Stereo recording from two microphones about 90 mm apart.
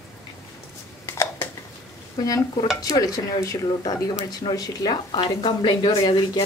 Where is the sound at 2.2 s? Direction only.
40° left (ahead or behind).